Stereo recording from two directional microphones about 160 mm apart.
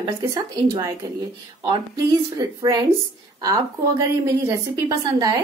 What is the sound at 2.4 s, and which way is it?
Speech, 25° right (ahead or behind).